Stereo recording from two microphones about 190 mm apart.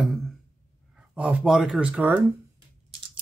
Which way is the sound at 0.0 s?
Centre (ahead or behind).